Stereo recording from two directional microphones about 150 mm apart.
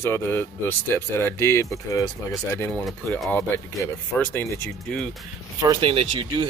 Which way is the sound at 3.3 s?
15° left (ahead or behind).